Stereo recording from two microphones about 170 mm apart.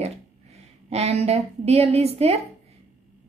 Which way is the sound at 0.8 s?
40° right (ahead or behind).